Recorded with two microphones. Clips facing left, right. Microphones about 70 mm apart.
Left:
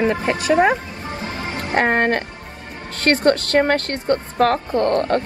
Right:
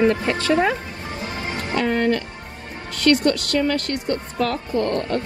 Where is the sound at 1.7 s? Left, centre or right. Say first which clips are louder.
Left 3 dB; left.